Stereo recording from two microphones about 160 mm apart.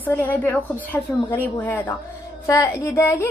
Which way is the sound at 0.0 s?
10° left (ahead or behind).